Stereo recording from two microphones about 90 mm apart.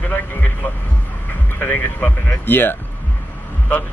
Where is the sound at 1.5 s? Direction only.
20° left (ahead or behind).